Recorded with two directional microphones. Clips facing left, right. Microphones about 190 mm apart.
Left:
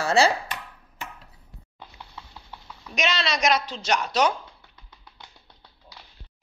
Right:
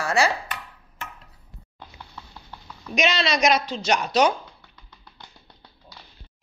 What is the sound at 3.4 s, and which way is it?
Speech, 15° right (ahead or behind).